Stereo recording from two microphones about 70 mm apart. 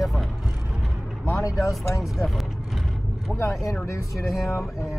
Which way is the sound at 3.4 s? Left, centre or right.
Left.